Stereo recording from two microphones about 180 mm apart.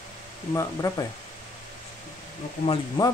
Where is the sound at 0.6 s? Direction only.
20° left (ahead or behind).